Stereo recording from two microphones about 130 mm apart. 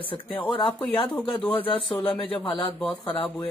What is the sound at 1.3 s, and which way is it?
Speech, 40° left (ahead or behind).